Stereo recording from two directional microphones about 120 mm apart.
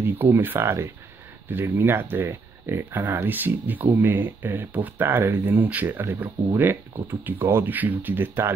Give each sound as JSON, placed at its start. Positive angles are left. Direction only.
{"t": 0.0, "sound": "speech", "side_deg": -15}